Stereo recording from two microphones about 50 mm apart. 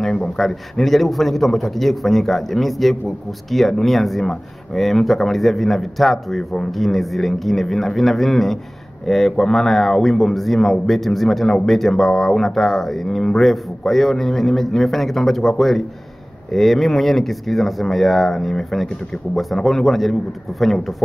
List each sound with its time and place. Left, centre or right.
0.0 s a man's voice: centre
0.4 s speech: centre